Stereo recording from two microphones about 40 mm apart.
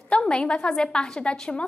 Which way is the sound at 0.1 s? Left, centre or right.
Left.